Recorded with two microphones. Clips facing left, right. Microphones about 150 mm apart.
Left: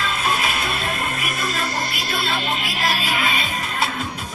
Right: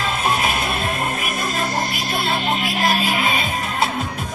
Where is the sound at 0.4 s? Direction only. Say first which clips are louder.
Right 3 dB; 50° right (ahead or behind).